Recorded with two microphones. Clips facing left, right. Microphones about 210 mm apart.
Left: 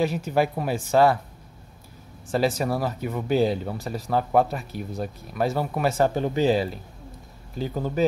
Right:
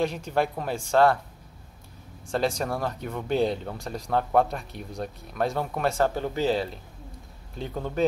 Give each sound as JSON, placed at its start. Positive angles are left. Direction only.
{"t": 0.0, "sound": "speech", "side_deg": 5}
{"t": 2.2, "sound": "speech", "side_deg": 5}
{"t": 6.1, "sound": "speech", "side_deg": 15}